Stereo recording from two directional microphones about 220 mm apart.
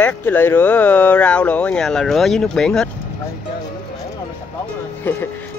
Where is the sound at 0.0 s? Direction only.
10° left (ahead or behind).